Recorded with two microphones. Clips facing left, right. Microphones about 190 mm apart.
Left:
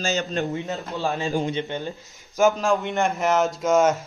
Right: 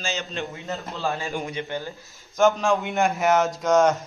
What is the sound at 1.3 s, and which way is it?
Speech, 25° left (ahead or behind).